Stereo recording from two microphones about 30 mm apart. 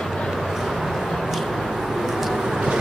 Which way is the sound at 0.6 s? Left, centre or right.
Centre.